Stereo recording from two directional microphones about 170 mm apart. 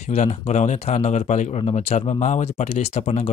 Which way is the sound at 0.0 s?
40° left (ahead or behind).